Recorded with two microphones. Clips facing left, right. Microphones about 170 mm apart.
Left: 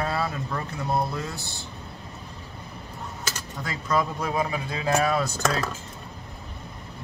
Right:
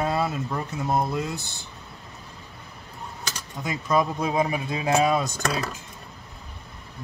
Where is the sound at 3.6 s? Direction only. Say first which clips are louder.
Right 3 dB; 20° right (ahead or behind).